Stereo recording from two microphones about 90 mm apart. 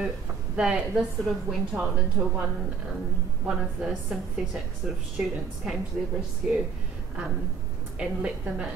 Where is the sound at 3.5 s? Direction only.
10° right (ahead or behind).